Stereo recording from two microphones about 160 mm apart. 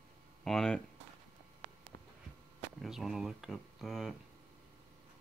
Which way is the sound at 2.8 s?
Centre (ahead or behind).